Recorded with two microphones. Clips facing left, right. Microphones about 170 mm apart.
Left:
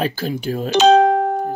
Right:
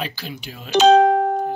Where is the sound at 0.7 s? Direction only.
90° left.